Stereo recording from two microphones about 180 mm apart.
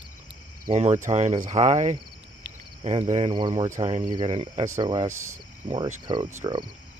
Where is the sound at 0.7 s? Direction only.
35° right (ahead or behind).